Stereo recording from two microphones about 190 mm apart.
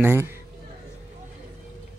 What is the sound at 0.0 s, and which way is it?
Speech, 10° right (ahead or behind).